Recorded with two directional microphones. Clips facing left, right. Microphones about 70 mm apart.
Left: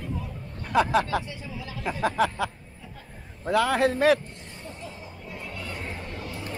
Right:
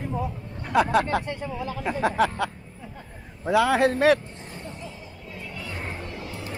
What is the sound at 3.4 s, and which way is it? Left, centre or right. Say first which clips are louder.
Speech: right 2 dB; centre.